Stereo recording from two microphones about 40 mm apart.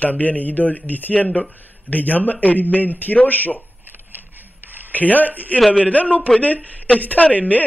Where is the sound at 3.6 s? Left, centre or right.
Right.